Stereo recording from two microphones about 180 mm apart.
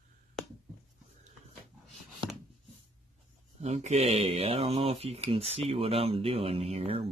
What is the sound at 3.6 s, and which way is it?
Speech, 40° right (ahead or behind).